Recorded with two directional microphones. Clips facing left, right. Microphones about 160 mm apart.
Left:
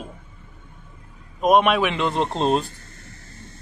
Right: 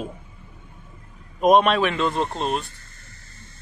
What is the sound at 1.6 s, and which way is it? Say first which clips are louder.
A man's voice: even; 10° left (ahead or behind).